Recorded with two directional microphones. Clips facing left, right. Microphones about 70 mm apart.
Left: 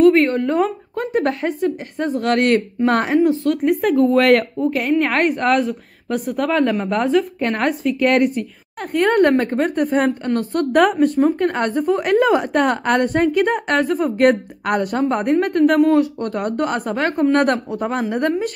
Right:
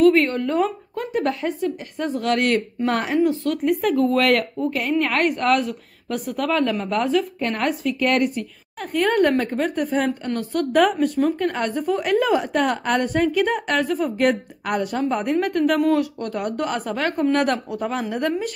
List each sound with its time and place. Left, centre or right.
0.0 s a woman's voice: left
4.2 s a woman's voice: left
15.0 s a woman's voice: left